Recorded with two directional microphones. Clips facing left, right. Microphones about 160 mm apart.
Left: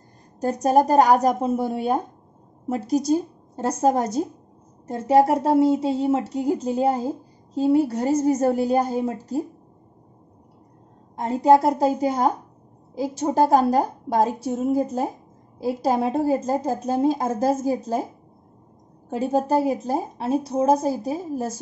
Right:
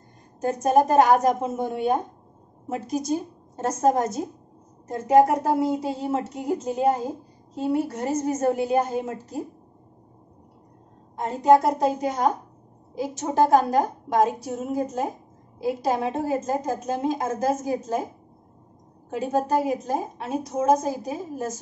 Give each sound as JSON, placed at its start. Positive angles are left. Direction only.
{"t": 0.4, "sound": "a woman's voice", "side_deg": 35}
{"t": 2.7, "sound": "a woman's voice", "side_deg": 35}
{"t": 11.4, "sound": "a woman's voice", "side_deg": 35}
{"t": 19.0, "sound": "a woman's voice", "side_deg": 35}